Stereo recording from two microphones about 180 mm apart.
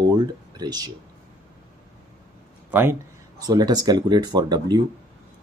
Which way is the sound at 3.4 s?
20° right (ahead or behind).